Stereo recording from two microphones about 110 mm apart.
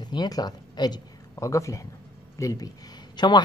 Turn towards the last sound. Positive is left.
turn(degrees=45)  # may be behind; listen again after turning